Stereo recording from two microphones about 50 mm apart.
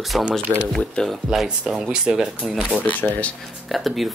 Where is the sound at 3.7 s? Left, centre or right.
Centre.